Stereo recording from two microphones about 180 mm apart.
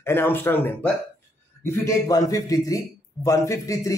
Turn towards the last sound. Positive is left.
turn(degrees=20)  # may be behind; listen again after turning